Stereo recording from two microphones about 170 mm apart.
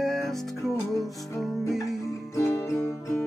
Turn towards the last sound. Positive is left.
turn(degrees=15)  # may be behind; listen again after turning